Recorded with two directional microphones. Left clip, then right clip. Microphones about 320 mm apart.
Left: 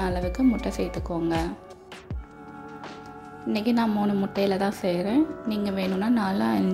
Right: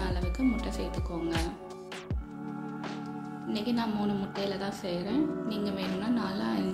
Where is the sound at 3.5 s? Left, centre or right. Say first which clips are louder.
Left 7 dB; left.